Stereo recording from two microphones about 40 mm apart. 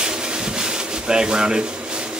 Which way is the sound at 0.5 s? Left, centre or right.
Centre.